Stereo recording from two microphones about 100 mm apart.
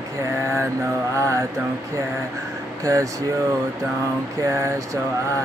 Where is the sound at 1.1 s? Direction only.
30° right (ahead or behind).